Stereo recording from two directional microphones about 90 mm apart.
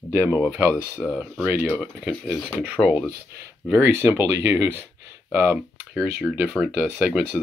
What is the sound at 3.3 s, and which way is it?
Speech, 25° right (ahead or behind).